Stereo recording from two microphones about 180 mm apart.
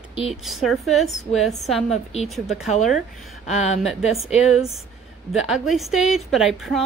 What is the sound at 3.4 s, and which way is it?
Speech, 40° left (ahead or behind).